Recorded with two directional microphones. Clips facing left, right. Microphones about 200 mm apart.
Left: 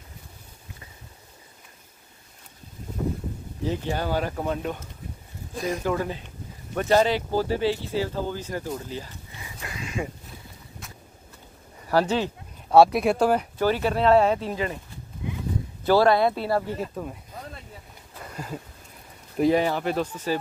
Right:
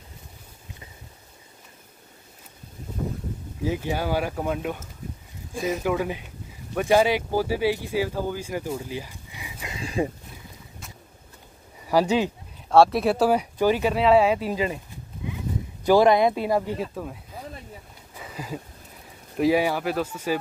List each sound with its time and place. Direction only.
3.6 s speech: 10° right (ahead or behind)
9.8 s speech: 35° right (ahead or behind)
11.9 s speech: 10° right (ahead or behind)
12.6 s speech: centre (ahead or behind); by 14.8 s 15° right (ahead or behind)
15.8 s speech: 15° right (ahead or behind)
16.8 s speech: centre (ahead or behind)
18.1 s a sound: 5° right (ahead or behind)
19.3 s speech: 5° right (ahead or behind)